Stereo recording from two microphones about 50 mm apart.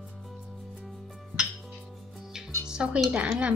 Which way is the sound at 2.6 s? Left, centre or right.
Centre.